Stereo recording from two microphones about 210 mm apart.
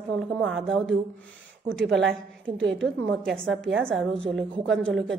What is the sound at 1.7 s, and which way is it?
Speech, 60° right (ahead or behind).